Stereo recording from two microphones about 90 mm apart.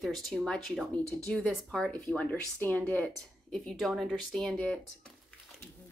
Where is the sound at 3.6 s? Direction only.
Centre (ahead or behind).